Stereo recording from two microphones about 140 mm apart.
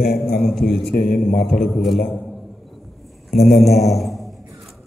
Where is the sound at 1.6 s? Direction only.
Centre (ahead or behind).